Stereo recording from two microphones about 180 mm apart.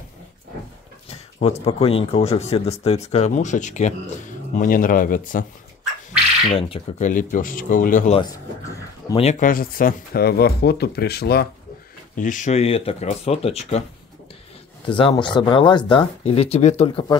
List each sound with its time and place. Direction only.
1.1 s speech: 35° left (ahead or behind)
6.5 s speech: 35° left (ahead or behind)
7.1 s speech: 45° left (ahead or behind)
12.2 s speech: 45° left (ahead or behind)
14.9 s speech: 25° left (ahead or behind)